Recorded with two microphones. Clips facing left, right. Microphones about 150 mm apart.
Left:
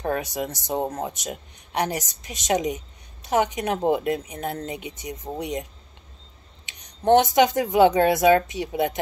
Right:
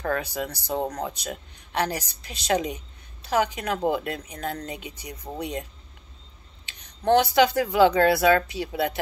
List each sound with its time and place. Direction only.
0.0 s speech: 20° left (ahead or behind)
7.0 s speech: 20° left (ahead or behind)